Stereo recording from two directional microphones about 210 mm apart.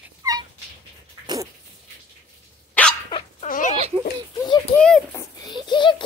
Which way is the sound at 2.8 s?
10° left (ahead or behind).